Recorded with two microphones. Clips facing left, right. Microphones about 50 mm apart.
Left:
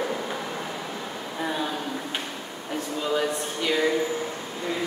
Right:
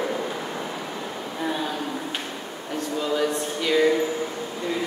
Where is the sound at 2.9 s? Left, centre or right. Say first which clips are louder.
Right 2 dB; centre.